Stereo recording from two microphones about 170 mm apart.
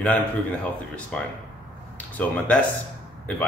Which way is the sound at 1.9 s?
10° left (ahead or behind).